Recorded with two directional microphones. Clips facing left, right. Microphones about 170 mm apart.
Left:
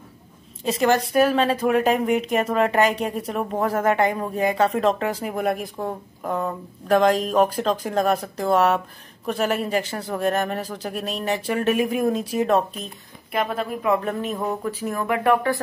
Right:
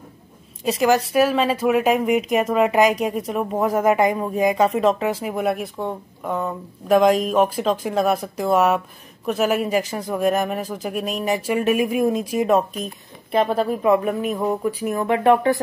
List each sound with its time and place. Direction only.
0.7 s a woman's voice: 5° right (ahead or behind)
13.3 s a woman's voice: 30° right (ahead or behind)
13.8 s a woman's voice: 15° right (ahead or behind)
15.0 s speech: 25° right (ahead or behind)